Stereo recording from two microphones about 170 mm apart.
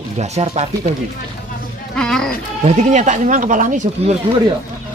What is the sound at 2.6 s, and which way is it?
Speech, 45° right (ahead or behind).